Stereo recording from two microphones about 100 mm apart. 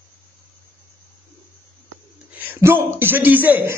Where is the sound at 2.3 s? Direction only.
20° right (ahead or behind).